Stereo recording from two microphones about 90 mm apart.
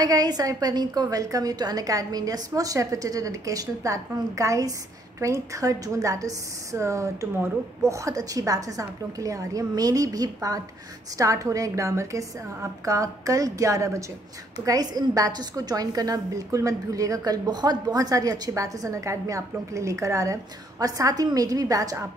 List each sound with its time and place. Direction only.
0.0 s a woman's voice: 45° right (ahead or behind)